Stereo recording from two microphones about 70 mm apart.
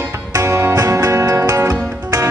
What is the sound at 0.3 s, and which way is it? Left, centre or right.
Music, right.